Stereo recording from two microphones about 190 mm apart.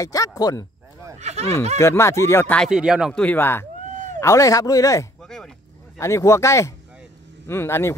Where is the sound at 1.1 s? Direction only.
35° right (ahead or behind).